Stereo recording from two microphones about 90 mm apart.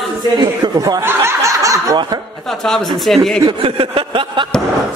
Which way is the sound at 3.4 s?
90° right.